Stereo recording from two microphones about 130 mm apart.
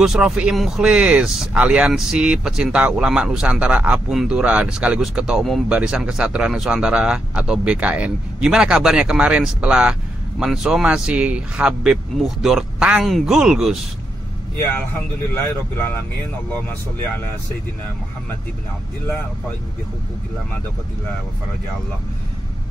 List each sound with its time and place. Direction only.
0.0 s speech: 5° right (ahead or behind)
15.3 s speech: 20° left (ahead or behind)